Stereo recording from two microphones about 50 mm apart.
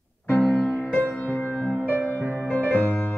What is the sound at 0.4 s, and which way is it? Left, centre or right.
Music, centre.